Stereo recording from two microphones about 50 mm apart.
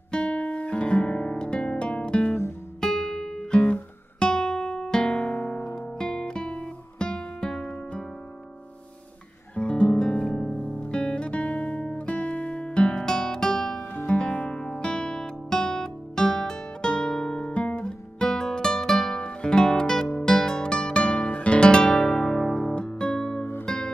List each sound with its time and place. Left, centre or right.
0.1 s guitar: left
2.8 s guitar: centre
9.6 s music: left
10.6 s guitar: left
19.1 s music: left
21.0 s guitar: left; by 22.8 s centre
22.8 s music: left